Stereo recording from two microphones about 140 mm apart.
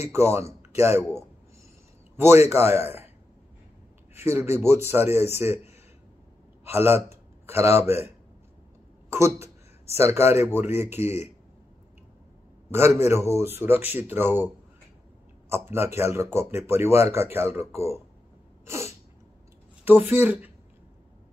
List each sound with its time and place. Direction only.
0.1 s speech: 20° right (ahead or behind)
2.1 s a man's voice: 20° right (ahead or behind)
4.1 s speech: 15° right (ahead or behind)
6.6 s a sound: 15° right (ahead or behind)
9.1 s speech: 20° right (ahead or behind)
11.0 s speech: 50° left (ahead or behind)
12.7 s speech: 15° right (ahead or behind)
15.5 s speech: 15° right (ahead or behind)
18.7 s sneeze: 20° right (ahead or behind)
19.8 s speech: 15° right (ahead or behind)